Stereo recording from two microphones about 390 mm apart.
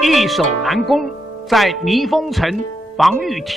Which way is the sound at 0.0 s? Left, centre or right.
Centre.